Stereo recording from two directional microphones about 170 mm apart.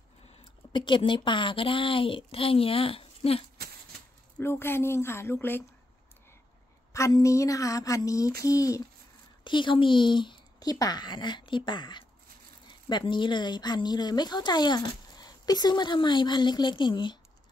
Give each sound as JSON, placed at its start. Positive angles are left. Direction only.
{"t": 0.7, "sound": "a woman's voice", "side_deg": 30}
{"t": 4.4, "sound": "speech", "side_deg": 15}
{"t": 6.9, "sound": "speech", "side_deg": 20}